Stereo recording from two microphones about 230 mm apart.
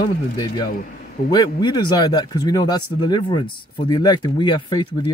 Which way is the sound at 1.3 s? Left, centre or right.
Centre.